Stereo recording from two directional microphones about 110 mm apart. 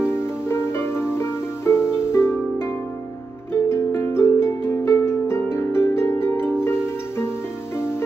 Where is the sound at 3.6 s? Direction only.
25° left (ahead or behind).